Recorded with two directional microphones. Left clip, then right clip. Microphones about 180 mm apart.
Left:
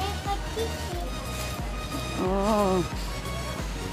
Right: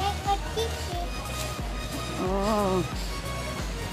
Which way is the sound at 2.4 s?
15° left (ahead or behind).